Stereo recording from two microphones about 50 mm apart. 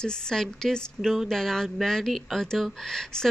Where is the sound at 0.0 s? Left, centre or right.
Centre.